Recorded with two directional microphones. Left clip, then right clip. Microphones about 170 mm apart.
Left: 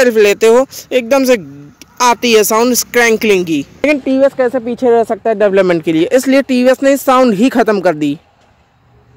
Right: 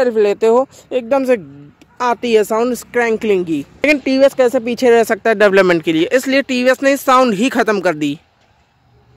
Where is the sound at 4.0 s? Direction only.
20° right (ahead or behind).